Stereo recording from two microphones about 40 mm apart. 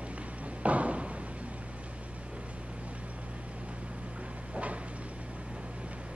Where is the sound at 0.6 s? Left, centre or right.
Right.